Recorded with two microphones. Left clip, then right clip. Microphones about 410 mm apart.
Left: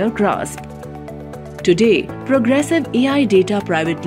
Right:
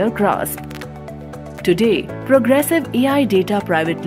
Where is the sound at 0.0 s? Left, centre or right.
Centre.